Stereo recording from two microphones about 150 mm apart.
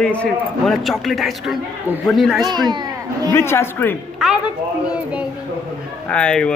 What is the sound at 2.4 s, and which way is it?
Speech, 30° right (ahead or behind).